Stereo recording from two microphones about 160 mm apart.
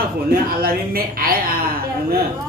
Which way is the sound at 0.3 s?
70° right (ahead or behind).